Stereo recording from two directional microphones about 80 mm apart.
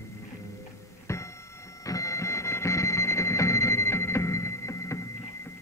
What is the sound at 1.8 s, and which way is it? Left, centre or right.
Music, left.